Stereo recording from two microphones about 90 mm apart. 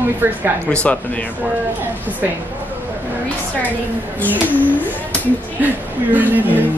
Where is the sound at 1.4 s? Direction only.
20° right (ahead or behind).